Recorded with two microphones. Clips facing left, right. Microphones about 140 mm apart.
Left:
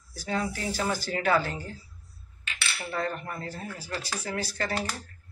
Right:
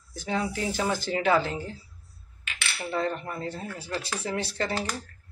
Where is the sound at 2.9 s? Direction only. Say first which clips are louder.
Right 3 dB; 25° right (ahead or behind).